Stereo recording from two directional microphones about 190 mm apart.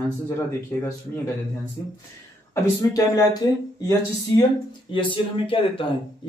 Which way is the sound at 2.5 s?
20° left (ahead or behind).